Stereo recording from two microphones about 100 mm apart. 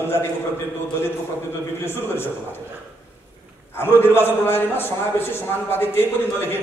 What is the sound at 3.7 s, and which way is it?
A man's voice, 20° left (ahead or behind).